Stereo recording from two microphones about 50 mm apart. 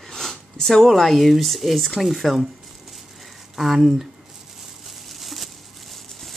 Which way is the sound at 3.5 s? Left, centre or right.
Centre.